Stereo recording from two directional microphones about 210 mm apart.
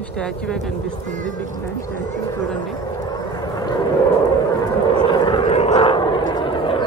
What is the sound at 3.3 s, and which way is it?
Vehicle, 20° left (ahead or behind).